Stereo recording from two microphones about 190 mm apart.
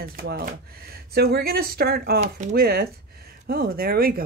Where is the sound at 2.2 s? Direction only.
40° right (ahead or behind).